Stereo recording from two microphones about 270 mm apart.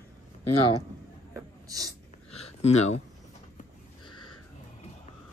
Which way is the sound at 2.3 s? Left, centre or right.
Left.